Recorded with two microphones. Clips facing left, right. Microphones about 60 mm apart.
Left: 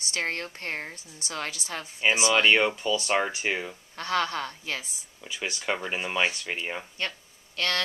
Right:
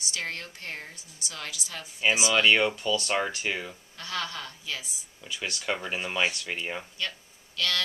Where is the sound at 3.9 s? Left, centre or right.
Left.